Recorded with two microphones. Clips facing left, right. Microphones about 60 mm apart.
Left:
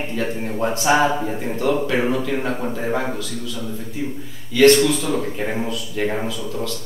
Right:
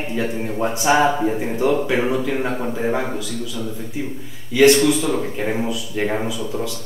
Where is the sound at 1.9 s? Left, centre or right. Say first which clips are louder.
Right 1 dB; centre.